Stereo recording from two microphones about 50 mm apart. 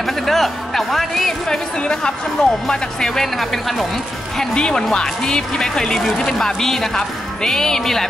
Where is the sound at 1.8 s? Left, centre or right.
Centre.